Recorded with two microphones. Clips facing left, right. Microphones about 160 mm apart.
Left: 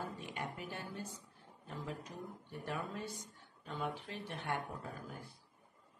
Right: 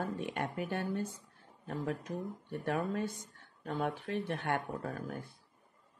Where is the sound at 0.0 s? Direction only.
60° right (ahead or behind).